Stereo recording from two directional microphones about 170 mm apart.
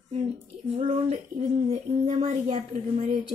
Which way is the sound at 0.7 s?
40° right (ahead or behind).